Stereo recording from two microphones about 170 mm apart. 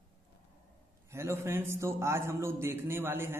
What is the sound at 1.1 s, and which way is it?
A man's voice, 15° right (ahead or behind).